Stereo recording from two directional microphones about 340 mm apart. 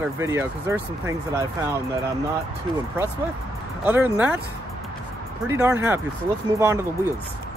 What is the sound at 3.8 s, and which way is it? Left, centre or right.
Speech, centre.